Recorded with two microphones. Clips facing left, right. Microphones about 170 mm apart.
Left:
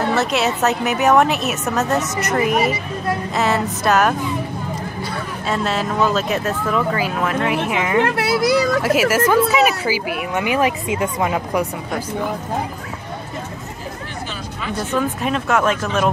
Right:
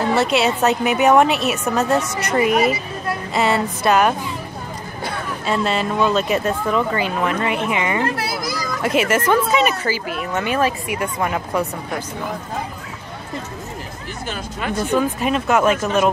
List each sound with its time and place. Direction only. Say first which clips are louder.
0.2 s speech: right 1 dB; centre (ahead or behind)
5.5 s speech: right 1 dB; centre (ahead or behind)
8.0 s a child's voice: left 5 dB; 70° left (ahead or behind)
8.8 s speech: left 2 dB; 5° left (ahead or behind)
15.0 s speech: even; 5° right (ahead or behind)